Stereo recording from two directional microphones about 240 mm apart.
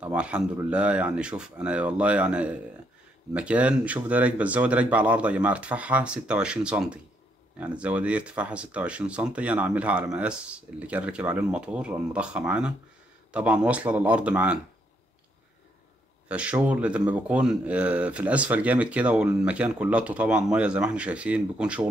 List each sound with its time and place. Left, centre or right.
0.0 s speech: centre
16.3 s speech: centre